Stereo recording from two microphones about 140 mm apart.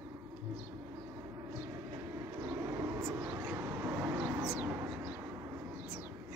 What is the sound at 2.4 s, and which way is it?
Vehicle, 20° right (ahead or behind).